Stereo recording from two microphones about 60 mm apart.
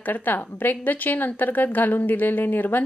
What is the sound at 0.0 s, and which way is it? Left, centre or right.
A woman's voice, left.